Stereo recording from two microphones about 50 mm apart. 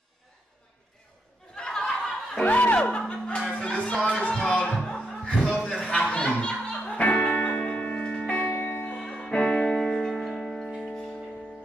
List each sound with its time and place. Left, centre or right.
1.5 s a sound: centre
2.4 s speech: left
2.9 s music: centre
5.5 s a sound: centre
5.9 s music: left
8.6 s music: left
8.9 s music: centre